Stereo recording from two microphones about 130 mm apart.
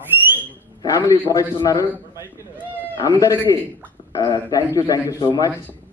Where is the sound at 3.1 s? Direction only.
25° left (ahead or behind).